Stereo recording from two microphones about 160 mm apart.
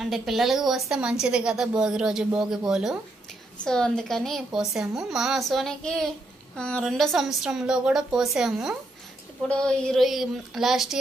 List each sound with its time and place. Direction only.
0.0 s a woman's voice: centre (ahead or behind)